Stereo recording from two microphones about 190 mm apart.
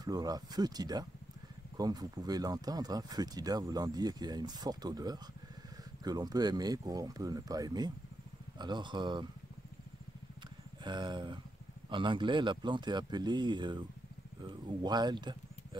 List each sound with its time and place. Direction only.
0.0 s speech: 20° right (ahead or behind)
10.8 s speech: 25° right (ahead or behind)